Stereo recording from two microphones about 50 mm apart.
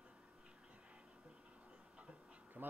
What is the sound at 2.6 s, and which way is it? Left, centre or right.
Bee, right.